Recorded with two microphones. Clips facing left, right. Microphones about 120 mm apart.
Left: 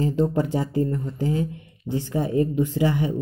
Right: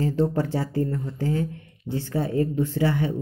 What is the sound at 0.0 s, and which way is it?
Speech, 15° left (ahead or behind).